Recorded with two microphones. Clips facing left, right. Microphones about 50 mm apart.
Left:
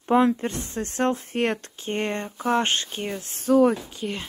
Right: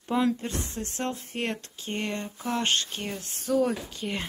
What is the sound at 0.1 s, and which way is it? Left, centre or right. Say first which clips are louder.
A woman's voice: left 6 dB; left.